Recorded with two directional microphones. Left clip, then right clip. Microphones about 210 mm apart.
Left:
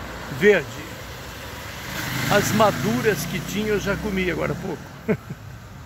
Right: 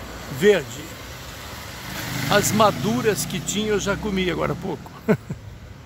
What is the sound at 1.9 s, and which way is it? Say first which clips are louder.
Vehicle: left 2 dB; 40° right (ahead or behind).